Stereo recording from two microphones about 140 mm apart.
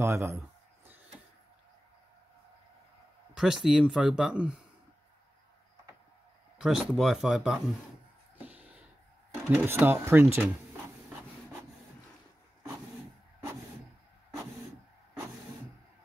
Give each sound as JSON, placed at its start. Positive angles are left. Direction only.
{"t": 0.0, "sound": "speech", "side_deg": -20}
{"t": 3.3, "sound": "speech", "side_deg": -5}
{"t": 6.6, "sound": "speech", "side_deg": 0}
{"t": 8.4, "sound": "a sound", "side_deg": -10}
{"t": 9.6, "sound": "speech", "side_deg": -15}